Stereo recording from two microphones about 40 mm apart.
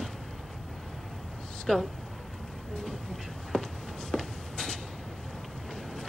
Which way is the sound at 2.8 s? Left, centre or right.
Centre.